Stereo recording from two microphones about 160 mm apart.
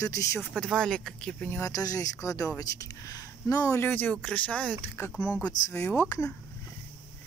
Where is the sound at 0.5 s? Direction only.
5° left (ahead or behind).